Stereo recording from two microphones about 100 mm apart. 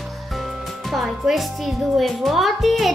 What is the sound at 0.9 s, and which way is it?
A woman's voice, centre (ahead or behind).